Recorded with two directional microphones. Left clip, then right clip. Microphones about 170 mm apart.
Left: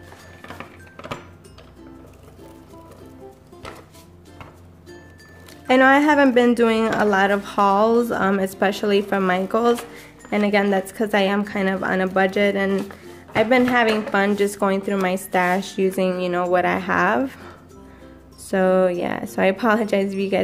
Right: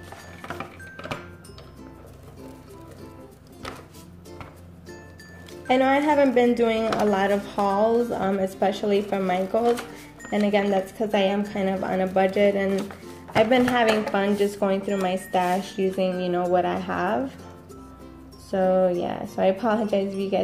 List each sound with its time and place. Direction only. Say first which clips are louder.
5.7 s speech: left 5 dB; 30° left (ahead or behind)
18.5 s speech: left 3 dB; 35° left (ahead or behind)